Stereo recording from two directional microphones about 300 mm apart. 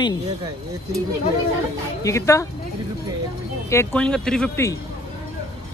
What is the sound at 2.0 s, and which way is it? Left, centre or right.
Speech, centre.